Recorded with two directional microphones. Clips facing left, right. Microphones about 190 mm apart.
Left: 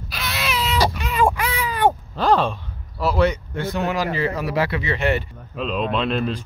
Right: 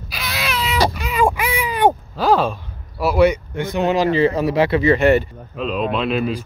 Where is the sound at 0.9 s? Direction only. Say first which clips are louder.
Right 2 dB; centre (ahead or behind).